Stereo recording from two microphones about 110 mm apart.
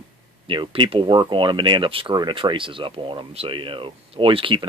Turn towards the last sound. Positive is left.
turn(degrees=-50)  # may be behind; listen again after turning